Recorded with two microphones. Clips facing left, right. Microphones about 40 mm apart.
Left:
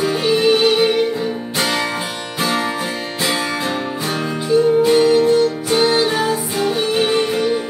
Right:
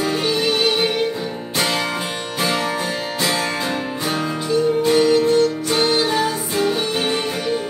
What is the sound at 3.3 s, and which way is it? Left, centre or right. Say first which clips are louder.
Music: left 2 dB; centre.